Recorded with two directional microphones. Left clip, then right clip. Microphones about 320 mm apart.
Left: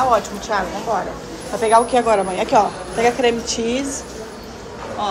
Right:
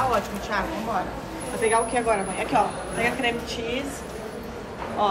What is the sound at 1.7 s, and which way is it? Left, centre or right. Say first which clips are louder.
A woman's voice: left 9 dB; left.